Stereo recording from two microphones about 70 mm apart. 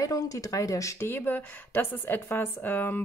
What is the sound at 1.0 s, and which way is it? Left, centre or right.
Speech, left.